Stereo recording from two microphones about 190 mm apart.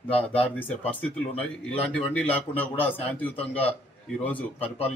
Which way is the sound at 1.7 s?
10° left (ahead or behind).